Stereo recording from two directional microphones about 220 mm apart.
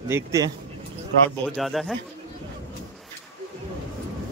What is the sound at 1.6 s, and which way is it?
Speech, centre (ahead or behind).